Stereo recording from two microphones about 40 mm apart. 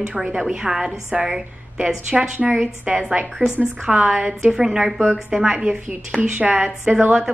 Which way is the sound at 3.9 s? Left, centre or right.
Right.